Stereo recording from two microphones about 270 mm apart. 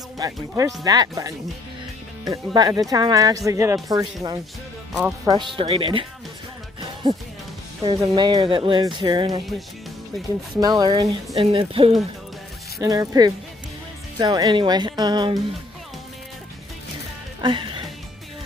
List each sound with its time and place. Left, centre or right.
0.2 s speech: centre
6.8 s music: centre
7.8 s speech: centre
10.6 s speech: centre
17.4 s music: centre